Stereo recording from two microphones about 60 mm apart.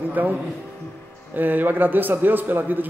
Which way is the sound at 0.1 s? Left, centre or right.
Right.